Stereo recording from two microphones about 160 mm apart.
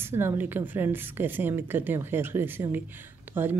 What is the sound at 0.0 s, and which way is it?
Speech, 15° right (ahead or behind).